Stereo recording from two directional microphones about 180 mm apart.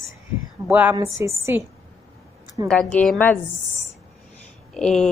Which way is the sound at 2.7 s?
10° left (ahead or behind).